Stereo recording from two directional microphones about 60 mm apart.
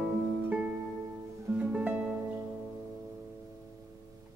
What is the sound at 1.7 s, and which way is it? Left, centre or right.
Music, right.